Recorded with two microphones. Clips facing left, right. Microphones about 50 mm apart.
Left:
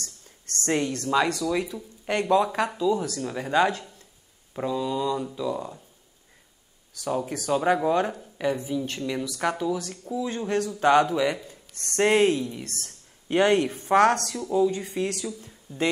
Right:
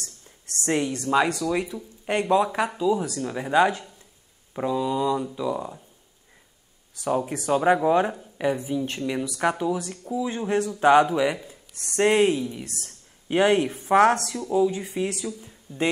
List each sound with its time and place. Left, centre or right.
0.0 s speech: centre
7.0 s speech: centre